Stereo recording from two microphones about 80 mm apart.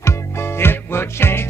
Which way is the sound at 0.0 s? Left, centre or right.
Left.